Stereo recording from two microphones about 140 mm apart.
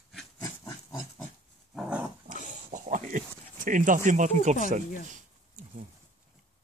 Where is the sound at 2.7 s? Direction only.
65° right (ahead or behind).